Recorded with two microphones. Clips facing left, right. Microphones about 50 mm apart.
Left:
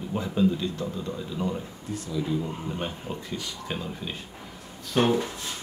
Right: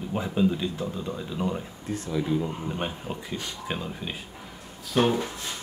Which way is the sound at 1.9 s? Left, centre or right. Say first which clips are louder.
Right 2 dB; right.